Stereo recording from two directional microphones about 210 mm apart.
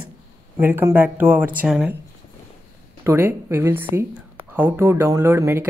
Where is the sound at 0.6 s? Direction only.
10° right (ahead or behind).